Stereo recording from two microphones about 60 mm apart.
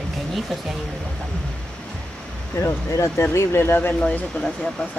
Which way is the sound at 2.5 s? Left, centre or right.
Left.